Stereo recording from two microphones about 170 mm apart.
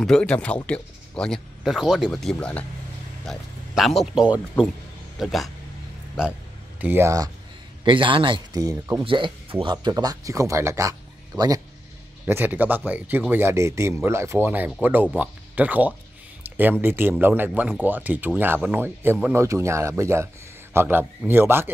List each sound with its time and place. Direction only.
0.0 s speech: 5° left (ahead or behind)
6.8 s speech: 15° right (ahead or behind)
7.8 s speech: 30° right (ahead or behind)
9.0 s speech: 30° right (ahead or behind)
12.3 s speech: 10° right (ahead or behind)
16.4 s a sound: 10° right (ahead or behind)
16.8 s speech: 10° right (ahead or behind)